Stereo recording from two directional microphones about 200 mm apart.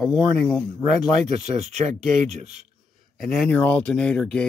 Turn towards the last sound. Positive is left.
turn(degrees=5)  # may be behind; listen again after turning